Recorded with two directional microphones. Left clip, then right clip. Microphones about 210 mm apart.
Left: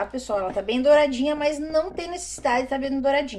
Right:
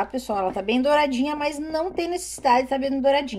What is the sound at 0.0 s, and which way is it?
A woman's voice, 45° right (ahead or behind).